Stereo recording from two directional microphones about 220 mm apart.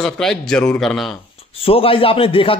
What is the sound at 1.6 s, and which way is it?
Speech, 25° left (ahead or behind).